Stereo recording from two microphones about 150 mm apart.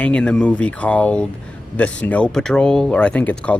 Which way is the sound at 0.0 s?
5° left (ahead or behind).